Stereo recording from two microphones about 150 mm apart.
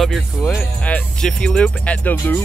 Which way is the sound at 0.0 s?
Centre (ahead or behind).